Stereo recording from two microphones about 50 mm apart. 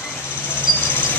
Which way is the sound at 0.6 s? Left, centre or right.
Left.